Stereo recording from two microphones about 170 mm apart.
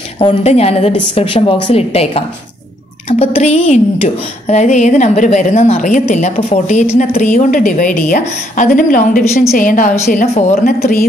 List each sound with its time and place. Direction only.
0.2 s a woman's voice: 40° left (ahead or behind)
10.0 s a woman's voice: 40° left (ahead or behind)
10.6 s a woman's voice: 60° left (ahead or behind)